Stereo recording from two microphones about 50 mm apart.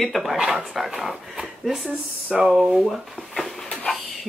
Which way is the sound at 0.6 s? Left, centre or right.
Centre.